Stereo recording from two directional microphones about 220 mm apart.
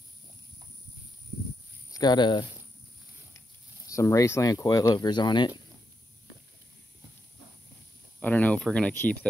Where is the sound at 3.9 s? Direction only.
15° left (ahead or behind).